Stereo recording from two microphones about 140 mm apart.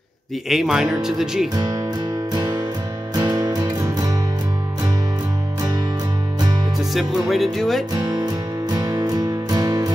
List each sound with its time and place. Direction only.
0.5 s speech: centre (ahead or behind)
1.5 s speech: 25° right (ahead or behind)
2.3 s music: 30° right (ahead or behind)
6.9 s speech: centre (ahead or behind)
7.9 s music: 30° right (ahead or behind)